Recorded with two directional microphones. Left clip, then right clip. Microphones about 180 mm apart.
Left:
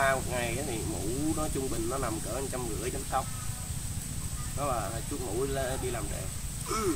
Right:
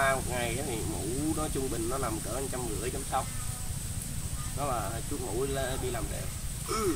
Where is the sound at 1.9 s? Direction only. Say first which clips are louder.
Even; 10° left (ahead or behind).